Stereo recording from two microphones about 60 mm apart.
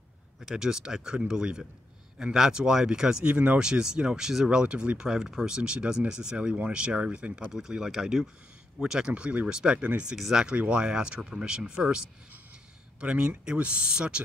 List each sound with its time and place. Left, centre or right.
0.4 s speech: centre
7.5 s speech: centre
10.1 s speech: centre
10.4 s speech: centre
13.0 s speech: centre